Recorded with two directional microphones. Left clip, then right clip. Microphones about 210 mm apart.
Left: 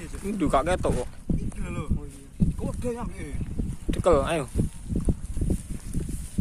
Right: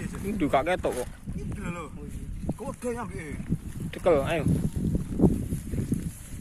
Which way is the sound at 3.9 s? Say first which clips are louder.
Left 2 dB; 15° left (ahead or behind).